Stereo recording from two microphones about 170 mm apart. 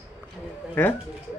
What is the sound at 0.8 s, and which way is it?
Speech, 10° left (ahead or behind).